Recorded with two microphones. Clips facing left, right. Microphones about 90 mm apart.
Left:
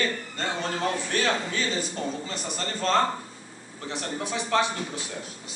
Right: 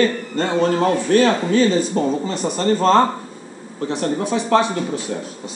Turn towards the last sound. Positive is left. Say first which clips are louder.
# right 10 dB
turn(degrees=-40)  # may be behind; listen again after turning